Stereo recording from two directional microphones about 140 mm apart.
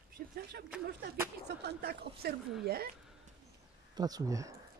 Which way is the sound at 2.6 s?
90° right.